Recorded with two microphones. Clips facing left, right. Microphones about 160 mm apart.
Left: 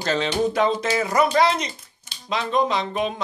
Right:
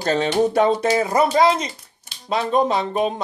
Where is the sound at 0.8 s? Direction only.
35° right (ahead or behind).